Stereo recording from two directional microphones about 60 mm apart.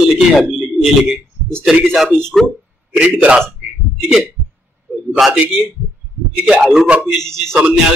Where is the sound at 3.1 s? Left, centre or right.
Right.